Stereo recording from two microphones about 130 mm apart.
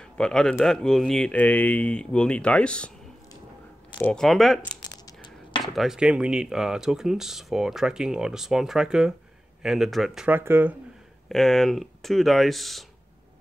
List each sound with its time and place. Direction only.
0.0 s speech: 5° left (ahead or behind)
4.0 s speech: 5° left (ahead or behind)
4.9 s a sound: 30° left (ahead or behind)
5.6 s speech: centre (ahead or behind)
10.3 s speech: 15° right (ahead or behind)
11.2 s speech: centre (ahead or behind)